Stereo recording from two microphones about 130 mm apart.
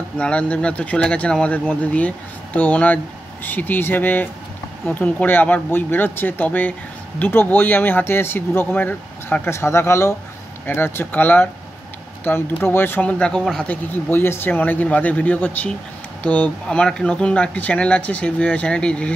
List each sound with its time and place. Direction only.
0.2 s speech: 10° left (ahead or behind)
13.7 s speech: 15° left (ahead or behind)